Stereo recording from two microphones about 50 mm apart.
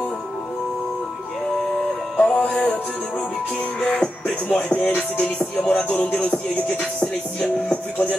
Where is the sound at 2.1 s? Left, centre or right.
Left.